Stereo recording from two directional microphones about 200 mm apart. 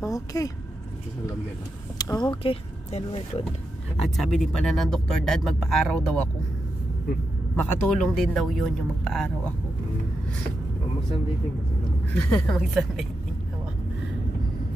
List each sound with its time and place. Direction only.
0.0 s speech: 15° left (ahead or behind)
2.0 s speech: 20° left (ahead or behind)
3.9 s speech: centre (ahead or behind)
7.5 s speech: 5° left (ahead or behind)
12.1 s speech: 5° left (ahead or behind)